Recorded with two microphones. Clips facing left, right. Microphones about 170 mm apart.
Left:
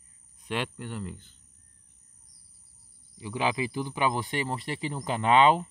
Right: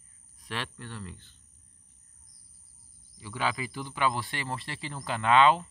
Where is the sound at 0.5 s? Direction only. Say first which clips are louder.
Left 5 dB; 15° left (ahead or behind).